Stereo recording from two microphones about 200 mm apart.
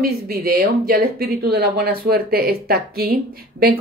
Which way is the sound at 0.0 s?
50° right (ahead or behind).